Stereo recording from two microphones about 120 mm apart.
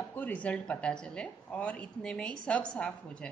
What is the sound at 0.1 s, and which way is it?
Speech, 15° left (ahead or behind).